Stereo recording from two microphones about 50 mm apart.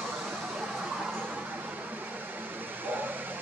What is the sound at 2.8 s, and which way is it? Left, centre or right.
Vehicle, right.